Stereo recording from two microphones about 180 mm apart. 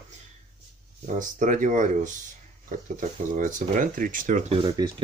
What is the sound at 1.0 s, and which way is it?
Speech, 45° right (ahead or behind).